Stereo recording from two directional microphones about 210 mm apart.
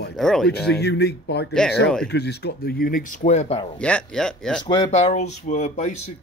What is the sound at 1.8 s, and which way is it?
Speech, 5° left (ahead or behind).